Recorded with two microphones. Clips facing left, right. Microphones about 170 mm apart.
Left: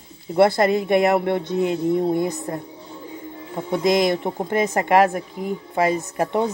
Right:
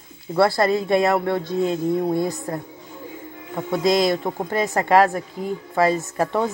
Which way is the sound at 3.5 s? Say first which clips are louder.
Even; 20° left (ahead or behind).